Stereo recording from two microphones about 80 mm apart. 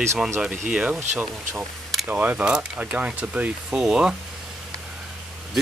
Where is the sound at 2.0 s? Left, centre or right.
Centre.